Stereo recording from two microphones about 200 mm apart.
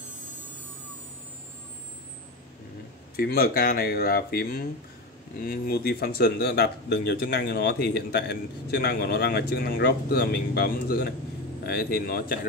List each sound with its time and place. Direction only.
3.2 s speech: 50° left (ahead or behind)